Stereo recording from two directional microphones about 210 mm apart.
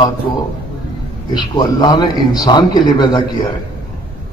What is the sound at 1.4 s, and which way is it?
A man's voice, 20° left (ahead or behind).